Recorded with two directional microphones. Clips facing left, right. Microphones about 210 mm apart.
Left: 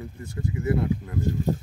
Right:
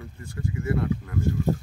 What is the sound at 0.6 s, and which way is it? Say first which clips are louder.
Speech: left 2 dB; 20° left (ahead or behind).